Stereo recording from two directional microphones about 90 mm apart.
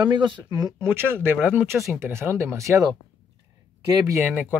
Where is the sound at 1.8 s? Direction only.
30° right (ahead or behind).